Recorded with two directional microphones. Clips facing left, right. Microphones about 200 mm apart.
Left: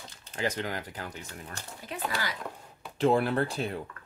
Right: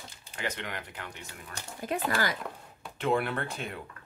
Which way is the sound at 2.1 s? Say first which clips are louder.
Right 5 dB; 50° right (ahead or behind).